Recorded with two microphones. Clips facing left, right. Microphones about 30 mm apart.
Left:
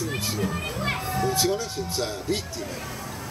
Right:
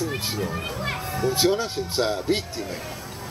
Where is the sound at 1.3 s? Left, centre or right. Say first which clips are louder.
Right 3 dB; right.